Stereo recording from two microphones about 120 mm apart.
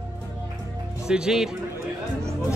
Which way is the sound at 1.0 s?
5° right (ahead or behind).